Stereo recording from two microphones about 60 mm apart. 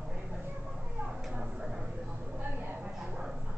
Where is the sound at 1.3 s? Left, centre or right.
Centre.